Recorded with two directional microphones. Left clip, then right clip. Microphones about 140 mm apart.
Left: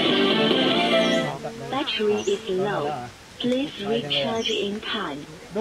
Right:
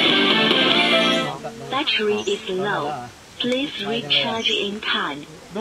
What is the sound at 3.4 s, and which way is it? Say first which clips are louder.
Radio: right 2 dB; 35° right (ahead or behind).